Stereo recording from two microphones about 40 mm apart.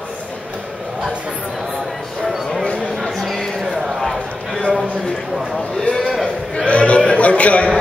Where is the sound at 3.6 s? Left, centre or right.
Centre.